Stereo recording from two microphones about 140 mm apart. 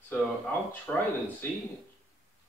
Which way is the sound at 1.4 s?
15° left (ahead or behind).